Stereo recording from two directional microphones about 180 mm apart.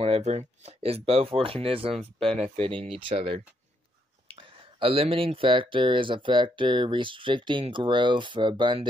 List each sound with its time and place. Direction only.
0.0 s speech: 35° right (ahead or behind)